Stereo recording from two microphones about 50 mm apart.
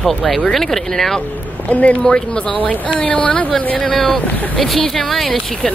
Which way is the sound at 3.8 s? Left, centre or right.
Centre.